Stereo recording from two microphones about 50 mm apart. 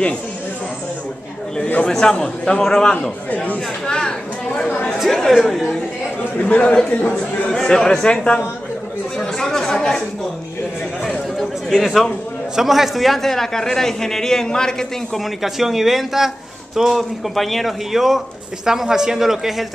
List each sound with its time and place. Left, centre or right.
1.6 s a man's voice: left
1.9 s a man's voice: centre
4.9 s speech: centre
6.4 s speech: left
6.9 s speech: left
7.5 s a man's voice: centre
11.3 s a sound: centre
12.5 s a man's voice: centre
15.4 s a man's voice: centre